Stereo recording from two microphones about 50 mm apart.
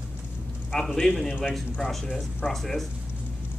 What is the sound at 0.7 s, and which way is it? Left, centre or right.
A man's voice, centre.